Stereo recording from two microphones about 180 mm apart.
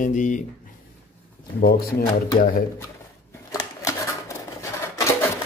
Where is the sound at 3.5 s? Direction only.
20° left (ahead or behind).